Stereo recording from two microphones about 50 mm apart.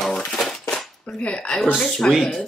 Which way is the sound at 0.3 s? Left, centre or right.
Centre.